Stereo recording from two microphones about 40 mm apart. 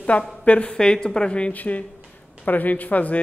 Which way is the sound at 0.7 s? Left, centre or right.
Centre.